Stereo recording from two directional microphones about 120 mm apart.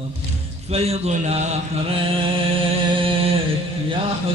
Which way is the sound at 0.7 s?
60° right (ahead or behind).